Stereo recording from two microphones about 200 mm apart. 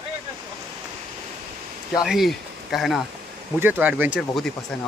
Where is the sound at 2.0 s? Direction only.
Centre (ahead or behind).